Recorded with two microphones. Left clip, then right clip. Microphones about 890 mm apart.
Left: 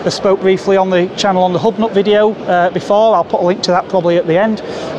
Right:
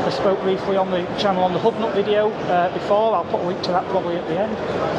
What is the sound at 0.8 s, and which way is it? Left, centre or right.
Speech, left.